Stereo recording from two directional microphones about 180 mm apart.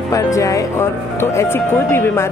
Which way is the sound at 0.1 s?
20° left (ahead or behind).